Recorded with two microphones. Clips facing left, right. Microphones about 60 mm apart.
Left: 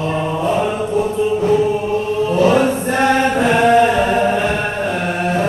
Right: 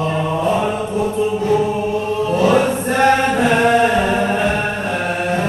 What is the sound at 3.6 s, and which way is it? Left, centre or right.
Music, right.